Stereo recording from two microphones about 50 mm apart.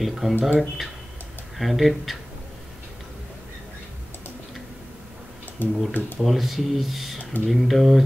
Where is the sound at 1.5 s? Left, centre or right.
Centre.